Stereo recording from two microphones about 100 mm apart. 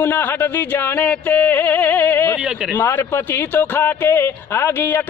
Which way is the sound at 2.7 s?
20° left (ahead or behind).